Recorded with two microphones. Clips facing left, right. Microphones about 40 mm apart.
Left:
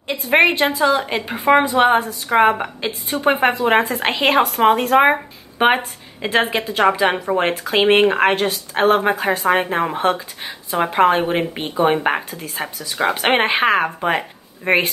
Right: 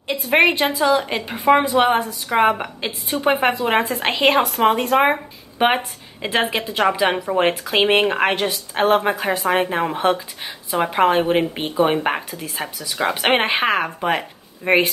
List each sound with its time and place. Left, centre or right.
0.1 s speech: centre
6.8 s speech: centre
7.3 s speech: centre